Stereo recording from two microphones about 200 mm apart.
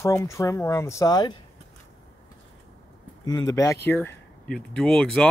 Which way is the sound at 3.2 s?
20° left (ahead or behind).